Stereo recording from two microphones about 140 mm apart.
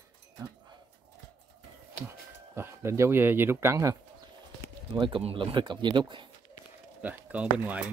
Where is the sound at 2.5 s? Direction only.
20° right (ahead or behind).